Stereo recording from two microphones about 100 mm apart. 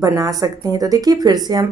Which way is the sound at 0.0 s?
35° right (ahead or behind).